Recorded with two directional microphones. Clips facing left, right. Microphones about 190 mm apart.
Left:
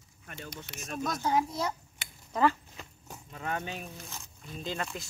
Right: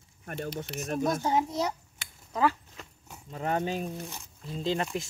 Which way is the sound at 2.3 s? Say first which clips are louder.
Even; 5° right (ahead or behind).